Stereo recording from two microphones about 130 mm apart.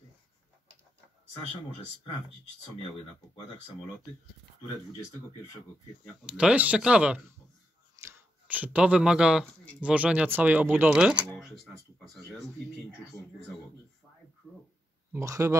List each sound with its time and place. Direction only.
6.2 s speech: 5° right (ahead or behind)
15.1 s speech: 25° right (ahead or behind)